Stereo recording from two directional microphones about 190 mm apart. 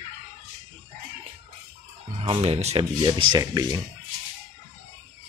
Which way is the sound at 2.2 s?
30° right (ahead or behind).